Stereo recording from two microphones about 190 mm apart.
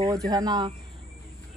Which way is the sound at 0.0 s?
20° right (ahead or behind).